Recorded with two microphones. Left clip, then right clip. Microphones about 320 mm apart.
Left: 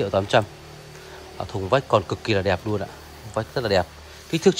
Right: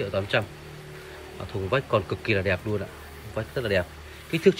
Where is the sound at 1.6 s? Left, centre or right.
Centre.